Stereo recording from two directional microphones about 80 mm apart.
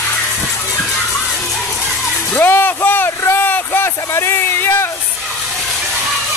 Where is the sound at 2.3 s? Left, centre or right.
Left.